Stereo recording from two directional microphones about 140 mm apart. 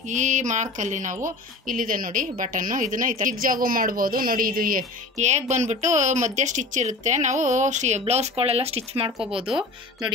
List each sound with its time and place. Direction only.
0.1 s speech: 60° right (ahead or behind)
1.2 s a woman's voice: 75° right (ahead or behind)
5.1 s speech: 55° right (ahead or behind)
8.0 s speech: 45° right (ahead or behind)
9.4 s speech: 5° right (ahead or behind)